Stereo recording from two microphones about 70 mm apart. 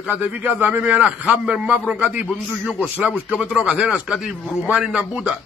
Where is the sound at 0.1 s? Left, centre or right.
Right.